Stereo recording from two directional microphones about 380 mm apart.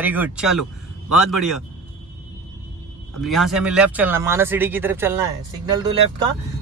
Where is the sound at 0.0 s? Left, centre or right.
Centre.